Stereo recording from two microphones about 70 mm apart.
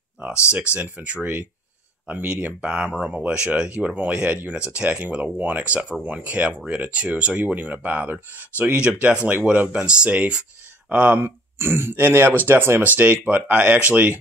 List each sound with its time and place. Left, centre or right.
0.2 s speech: centre
0.7 s speech: left
1.0 s speech: centre
11.2 s speech: right
12.9 s speech: right